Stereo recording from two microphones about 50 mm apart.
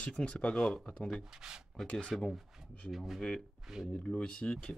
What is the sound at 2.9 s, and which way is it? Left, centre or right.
Speech, centre.